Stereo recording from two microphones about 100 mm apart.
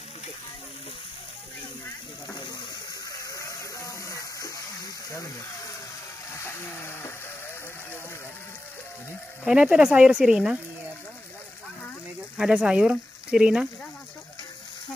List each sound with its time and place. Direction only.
3.1 s a sound: 35° left (ahead or behind)
6.3 s vehicle: 25° left (ahead or behind)
9.5 s speech: 10° right (ahead or behind)
12.4 s speech: 10° right (ahead or behind)